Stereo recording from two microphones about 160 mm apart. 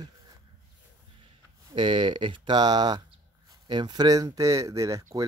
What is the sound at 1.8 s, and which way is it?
Speech, 30° right (ahead or behind).